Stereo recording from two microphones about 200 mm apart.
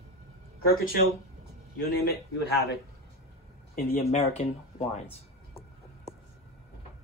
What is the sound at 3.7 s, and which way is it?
Speech, 35° left (ahead or behind).